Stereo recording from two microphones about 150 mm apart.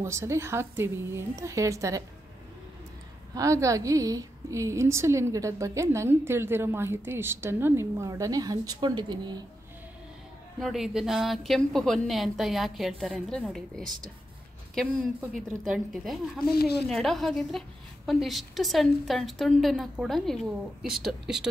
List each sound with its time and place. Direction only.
0.0 s a woman's voice: 20° right (ahead or behind)
3.3 s a woman's voice: 20° right (ahead or behind)
10.6 s a woman's voice: centre (ahead or behind)
15.7 s a woman's voice: centre (ahead or behind)
16.5 s speech: 90° left
16.8 s a woman's voice: centre (ahead or behind)